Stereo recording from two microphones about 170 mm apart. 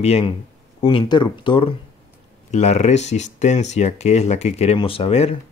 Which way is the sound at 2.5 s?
40° left (ahead or behind).